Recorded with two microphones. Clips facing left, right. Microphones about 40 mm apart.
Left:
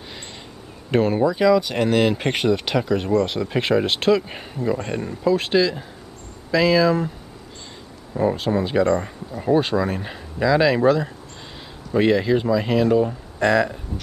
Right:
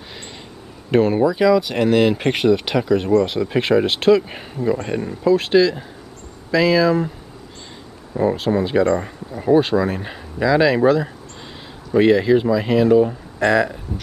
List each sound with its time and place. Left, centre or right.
0.9 s speech: centre
8.1 s speech: centre